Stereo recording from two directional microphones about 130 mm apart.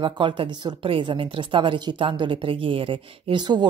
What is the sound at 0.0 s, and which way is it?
A woman's voice, 40° right (ahead or behind).